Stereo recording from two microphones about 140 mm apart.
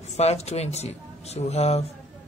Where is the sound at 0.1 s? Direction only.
50° left (ahead or behind).